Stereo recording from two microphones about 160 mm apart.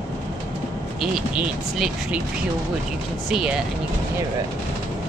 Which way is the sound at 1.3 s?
5° right (ahead or behind).